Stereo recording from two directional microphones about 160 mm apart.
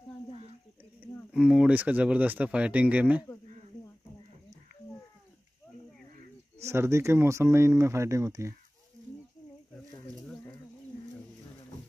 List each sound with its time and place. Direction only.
1.3 s speech: 5° right (ahead or behind)
6.6 s speech: 15° right (ahead or behind)
9.8 s a sound: 5° left (ahead or behind)